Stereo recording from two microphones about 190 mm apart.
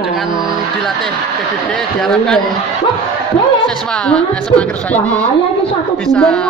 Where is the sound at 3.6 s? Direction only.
5° left (ahead or behind).